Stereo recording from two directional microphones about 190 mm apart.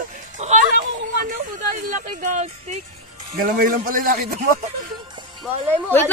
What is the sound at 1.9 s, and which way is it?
Speech, 40° right (ahead or behind).